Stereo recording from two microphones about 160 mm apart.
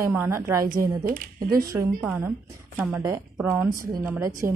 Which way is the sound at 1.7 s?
10° right (ahead or behind).